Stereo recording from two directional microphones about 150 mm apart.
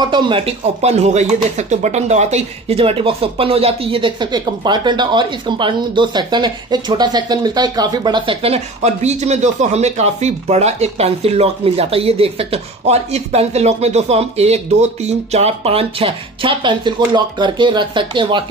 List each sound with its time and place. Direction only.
0.0 s speech: 35° right (ahead or behind)